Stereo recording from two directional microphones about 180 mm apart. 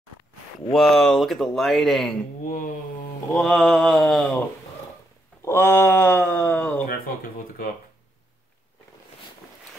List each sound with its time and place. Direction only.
0.7 s speech: centre (ahead or behind)
2.4 s mantra: 50° left (ahead or behind)
3.3 s speech: centre (ahead or behind)
5.4 s speech: 15° left (ahead or behind)
6.9 s speech: 55° left (ahead or behind)